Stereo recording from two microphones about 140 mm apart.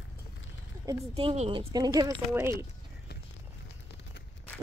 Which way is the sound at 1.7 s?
25° right (ahead or behind).